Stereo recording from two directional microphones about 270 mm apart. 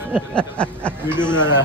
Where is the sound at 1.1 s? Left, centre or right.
Centre.